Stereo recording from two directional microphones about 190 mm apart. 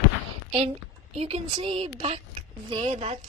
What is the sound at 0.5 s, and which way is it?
A woman's voice, 30° right (ahead or behind).